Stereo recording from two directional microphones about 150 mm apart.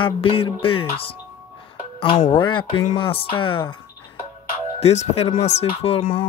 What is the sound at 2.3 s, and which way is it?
Speech, 35° left (ahead or behind).